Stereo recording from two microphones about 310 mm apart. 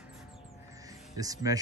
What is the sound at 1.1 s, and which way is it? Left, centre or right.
Speech, centre.